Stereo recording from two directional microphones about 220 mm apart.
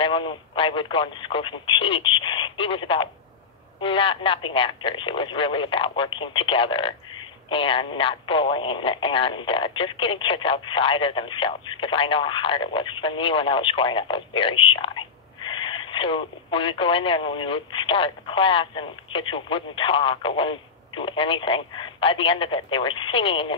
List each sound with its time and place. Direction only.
0.0 s speech: 25° left (ahead or behind)